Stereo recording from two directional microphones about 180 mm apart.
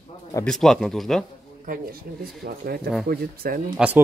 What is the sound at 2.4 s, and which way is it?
Speech, 60° right (ahead or behind).